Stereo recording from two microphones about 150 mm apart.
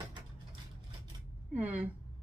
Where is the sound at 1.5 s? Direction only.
10° right (ahead or behind).